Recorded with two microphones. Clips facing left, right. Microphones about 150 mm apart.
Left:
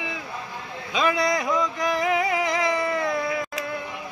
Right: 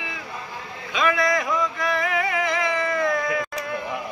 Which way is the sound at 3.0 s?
10° left (ahead or behind).